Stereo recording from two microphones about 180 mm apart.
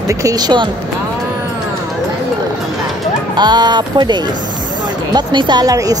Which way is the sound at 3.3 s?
25° right (ahead or behind).